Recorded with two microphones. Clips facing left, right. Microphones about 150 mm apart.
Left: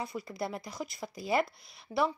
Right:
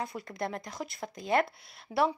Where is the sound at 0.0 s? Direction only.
Centre (ahead or behind).